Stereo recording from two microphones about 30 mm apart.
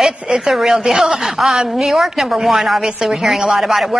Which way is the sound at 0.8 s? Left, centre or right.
Centre.